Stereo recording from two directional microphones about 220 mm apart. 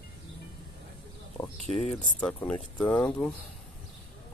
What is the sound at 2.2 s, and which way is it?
Speech, 5° left (ahead or behind).